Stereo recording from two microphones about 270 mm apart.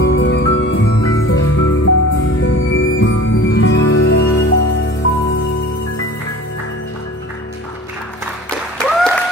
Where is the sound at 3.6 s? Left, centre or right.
Left.